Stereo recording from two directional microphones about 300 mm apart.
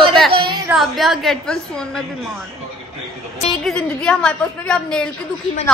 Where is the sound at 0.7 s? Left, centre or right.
Centre.